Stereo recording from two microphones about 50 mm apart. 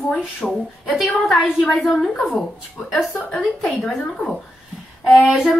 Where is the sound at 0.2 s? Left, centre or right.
Centre.